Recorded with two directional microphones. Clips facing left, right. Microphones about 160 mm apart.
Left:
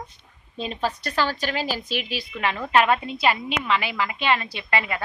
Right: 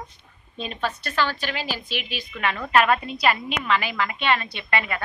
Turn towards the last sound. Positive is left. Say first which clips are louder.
# left 1 dB
turn(degrees=25)  # may be behind; listen again after turning